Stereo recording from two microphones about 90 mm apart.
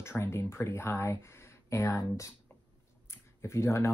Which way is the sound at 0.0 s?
30° left (ahead or behind).